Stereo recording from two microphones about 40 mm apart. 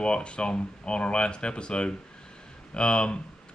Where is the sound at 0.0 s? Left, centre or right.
Left.